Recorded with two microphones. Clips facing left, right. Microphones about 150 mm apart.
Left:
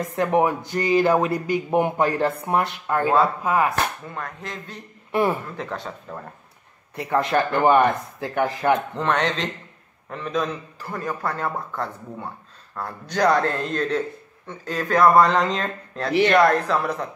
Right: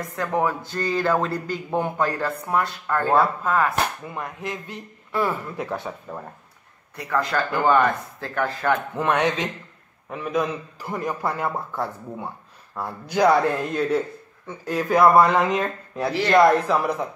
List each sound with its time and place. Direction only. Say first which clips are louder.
0.0 s speech: left 4 dB; 20° left (ahead or behind)
4.0 s a man's voice: right 2 dB; 10° right (ahead or behind)
5.1 s speech: left 3 dB; 20° left (ahead or behind)
5.6 s a man's voice: right 2 dB; 10° right (ahead or behind)
7.0 s speech: left 3 dB; 25° left (ahead or behind)
8.9 s a man's voice: right 1 dB; 10° right (ahead or behind)